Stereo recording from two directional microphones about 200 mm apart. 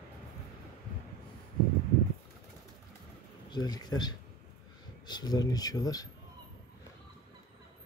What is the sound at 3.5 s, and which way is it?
Speech, 20° left (ahead or behind).